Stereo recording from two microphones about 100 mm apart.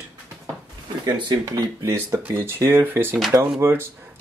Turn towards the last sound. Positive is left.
turn(degrees=-25)  # may be behind; listen again after turning